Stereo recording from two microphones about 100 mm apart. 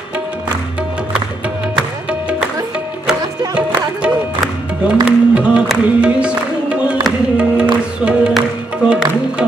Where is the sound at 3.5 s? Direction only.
10° right (ahead or behind).